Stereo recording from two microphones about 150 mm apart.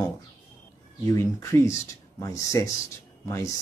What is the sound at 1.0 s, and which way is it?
Speech, 20° left (ahead or behind).